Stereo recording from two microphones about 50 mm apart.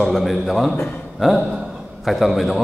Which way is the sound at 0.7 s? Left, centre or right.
Left.